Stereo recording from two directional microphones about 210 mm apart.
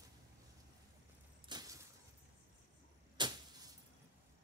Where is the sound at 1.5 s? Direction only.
20° right (ahead or behind).